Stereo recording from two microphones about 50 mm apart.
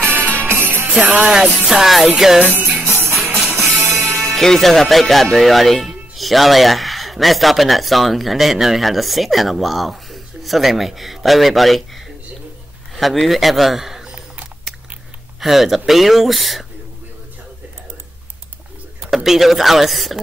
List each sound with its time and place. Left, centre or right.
0.0 s music: right
1.2 s music: centre
2.5 s music: right
3.5 s music: centre
4.4 s a man's voice: centre
15.4 s speech: centre
19.0 s speech: centre